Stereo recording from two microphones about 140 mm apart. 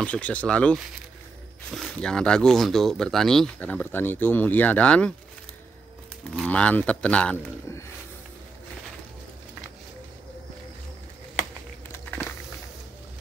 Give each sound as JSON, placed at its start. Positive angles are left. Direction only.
{"t": 0.0, "sound": "speech", "side_deg": 10}
{"t": 6.3, "sound": "speech", "side_deg": 5}
{"t": 11.9, "sound": "walk", "side_deg": 20}